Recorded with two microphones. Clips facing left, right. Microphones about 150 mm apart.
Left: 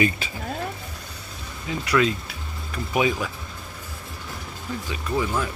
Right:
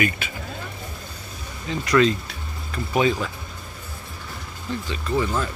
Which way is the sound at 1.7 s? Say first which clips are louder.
Right 3 dB; 10° left (ahead or behind).